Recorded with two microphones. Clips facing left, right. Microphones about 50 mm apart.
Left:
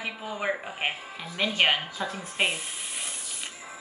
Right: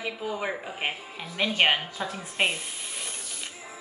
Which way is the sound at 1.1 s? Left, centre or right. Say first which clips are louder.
Right 2 dB; centre.